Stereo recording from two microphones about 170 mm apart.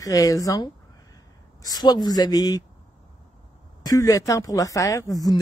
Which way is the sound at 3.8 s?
20° left (ahead or behind).